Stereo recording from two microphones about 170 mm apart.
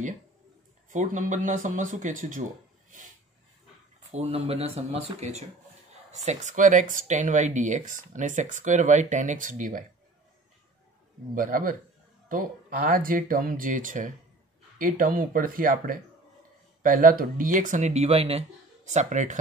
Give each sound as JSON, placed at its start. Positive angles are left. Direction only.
{"t": 0.8, "sound": "speech", "side_deg": -50}
{"t": 4.1, "sound": "speech", "side_deg": -35}
{"t": 11.3, "sound": "speech", "side_deg": -55}